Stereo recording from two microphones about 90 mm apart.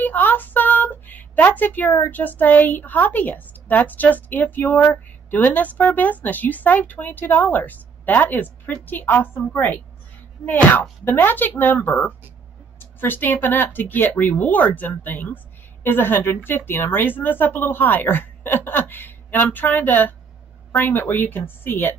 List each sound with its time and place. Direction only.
0.0 s speech: 20° left (ahead or behind)